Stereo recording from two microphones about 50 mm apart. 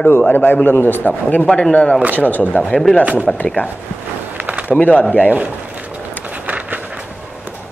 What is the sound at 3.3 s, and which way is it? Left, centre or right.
Speech, centre.